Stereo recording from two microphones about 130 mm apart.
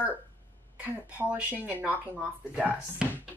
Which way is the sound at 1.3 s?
10° right (ahead or behind).